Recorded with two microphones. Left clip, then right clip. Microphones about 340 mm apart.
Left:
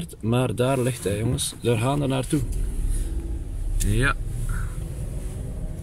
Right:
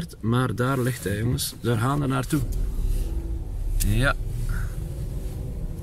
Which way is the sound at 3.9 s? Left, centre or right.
Centre.